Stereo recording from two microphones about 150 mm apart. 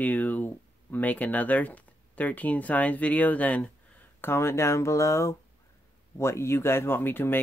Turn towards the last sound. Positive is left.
turn(degrees=15)  # may be behind; listen again after turning